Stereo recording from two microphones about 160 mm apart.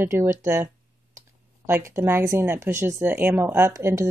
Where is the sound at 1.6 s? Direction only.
15° right (ahead or behind).